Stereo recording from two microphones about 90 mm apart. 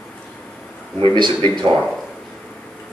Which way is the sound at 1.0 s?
65° right (ahead or behind).